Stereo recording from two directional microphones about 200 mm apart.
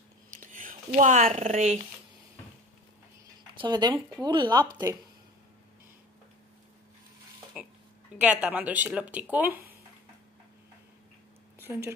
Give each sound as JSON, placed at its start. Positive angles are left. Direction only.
{"t": 0.4, "sound": "speech", "side_deg": -40}
{"t": 3.5, "sound": "speech", "side_deg": -20}
{"t": 7.5, "sound": "tick-tock", "side_deg": -5}
{"t": 8.2, "sound": "speech", "side_deg": -5}
{"t": 11.6, "sound": "a woman's voice", "side_deg": -15}